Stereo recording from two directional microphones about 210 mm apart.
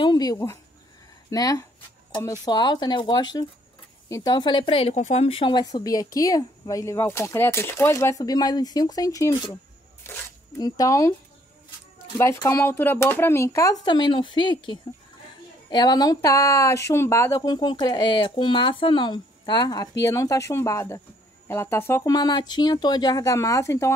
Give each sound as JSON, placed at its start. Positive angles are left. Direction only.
{"t": 0.0, "sound": "speech", "side_deg": 20}
{"t": 12.2, "sound": "speech", "side_deg": 15}